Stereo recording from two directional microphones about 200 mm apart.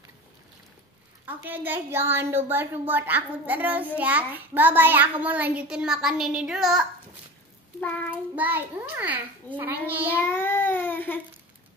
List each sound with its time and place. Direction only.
1.2 s a woman's voice: 10° right (ahead or behind)
7.8 s child singing: 10° left (ahead or behind)
8.4 s a woman's voice: 10° right (ahead or behind)
10.1 s speech: 10° left (ahead or behind)